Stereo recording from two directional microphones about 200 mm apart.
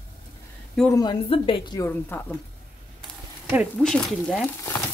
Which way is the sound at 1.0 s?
25° left (ahead or behind).